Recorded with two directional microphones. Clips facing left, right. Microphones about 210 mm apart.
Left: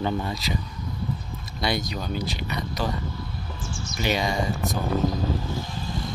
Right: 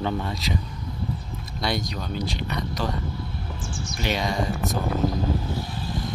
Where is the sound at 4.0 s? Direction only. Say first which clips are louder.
Left 1 dB; centre (ahead or behind).